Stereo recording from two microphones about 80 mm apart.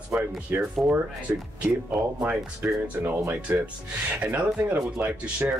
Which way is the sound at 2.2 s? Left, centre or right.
Centre.